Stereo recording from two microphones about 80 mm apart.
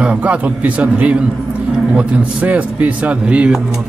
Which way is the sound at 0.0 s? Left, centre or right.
Centre.